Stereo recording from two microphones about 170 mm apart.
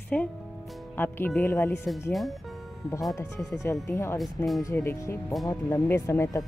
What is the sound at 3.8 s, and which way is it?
Speech, 15° left (ahead or behind).